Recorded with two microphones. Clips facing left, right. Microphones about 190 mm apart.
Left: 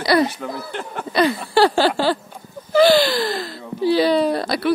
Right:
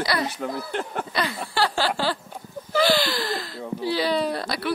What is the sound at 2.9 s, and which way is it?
Gasp, 55° left (ahead or behind).